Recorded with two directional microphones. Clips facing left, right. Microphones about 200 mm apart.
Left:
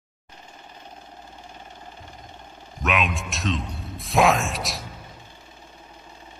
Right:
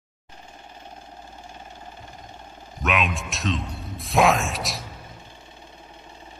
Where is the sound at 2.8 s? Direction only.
Centre (ahead or behind).